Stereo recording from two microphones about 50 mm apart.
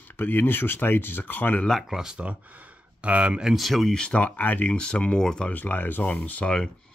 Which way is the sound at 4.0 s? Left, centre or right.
Left.